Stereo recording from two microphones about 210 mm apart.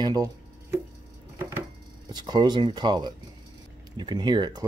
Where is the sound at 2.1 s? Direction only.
20° right (ahead or behind).